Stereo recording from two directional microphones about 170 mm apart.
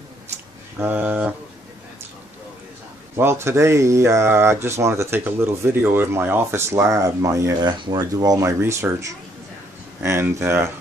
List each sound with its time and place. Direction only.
0.7 s speech: 10° right (ahead or behind)
3.2 s speech: 15° right (ahead or behind)
10.0 s speech: 15° right (ahead or behind)